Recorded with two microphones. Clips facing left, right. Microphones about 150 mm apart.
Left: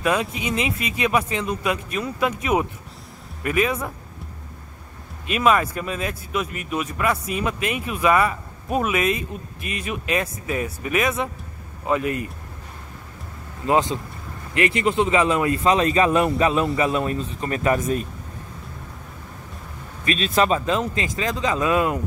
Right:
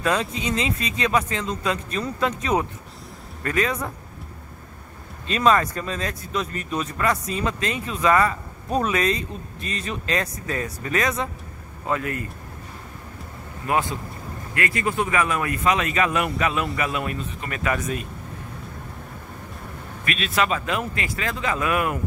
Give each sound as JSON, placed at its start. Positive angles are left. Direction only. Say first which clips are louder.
{"t": 0.0, "sound": "speech", "louder": "left 1 dB", "side_deg": 15}
{"t": 5.2, "sound": "speech", "louder": "even", "side_deg": 10}
{"t": 13.7, "sound": "speech", "louder": "left 4 dB", "side_deg": 20}
{"t": 20.1, "sound": "speech", "louder": "left 4 dB", "side_deg": 35}